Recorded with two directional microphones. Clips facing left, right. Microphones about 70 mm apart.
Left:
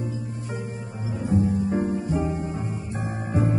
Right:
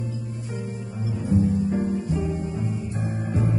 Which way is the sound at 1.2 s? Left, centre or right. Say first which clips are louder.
Right 1 dB; left.